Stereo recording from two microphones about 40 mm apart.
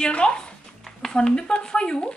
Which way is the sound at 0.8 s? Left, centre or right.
Centre.